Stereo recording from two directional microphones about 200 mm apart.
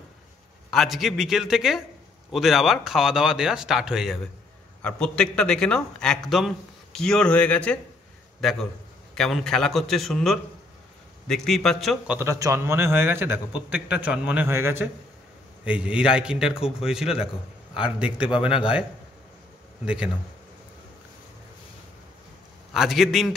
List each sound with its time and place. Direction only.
0.7 s a man's voice: centre (ahead or behind)
12.2 s a man's voice: 15° right (ahead or behind)
18.3 s a man's voice: 25° left (ahead or behind)
19.8 s speech: 5° right (ahead or behind)
22.7 s speech: centre (ahead or behind)